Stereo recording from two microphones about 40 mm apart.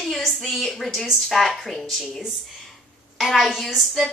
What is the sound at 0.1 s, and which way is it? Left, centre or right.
A woman's voice, centre.